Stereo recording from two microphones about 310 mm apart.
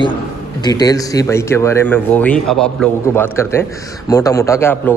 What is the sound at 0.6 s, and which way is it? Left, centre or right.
Speech, centre.